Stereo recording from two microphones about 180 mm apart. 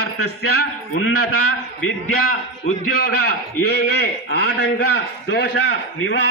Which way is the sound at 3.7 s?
60° left (ahead or behind).